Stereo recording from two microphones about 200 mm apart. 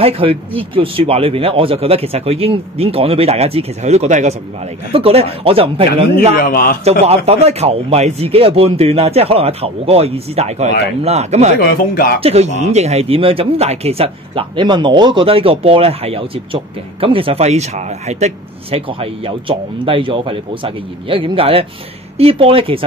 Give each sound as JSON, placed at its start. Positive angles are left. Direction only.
{"t": 0.0, "sound": "speech", "side_deg": -30}
{"t": 6.3, "sound": "speech", "side_deg": 45}
{"t": 6.8, "sound": "speech", "side_deg": -30}
{"t": 11.6, "sound": "speech", "side_deg": 50}
{"t": 12.2, "sound": "speech", "side_deg": -30}